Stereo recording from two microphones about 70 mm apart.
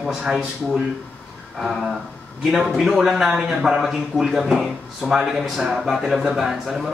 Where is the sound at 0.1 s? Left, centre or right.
Centre.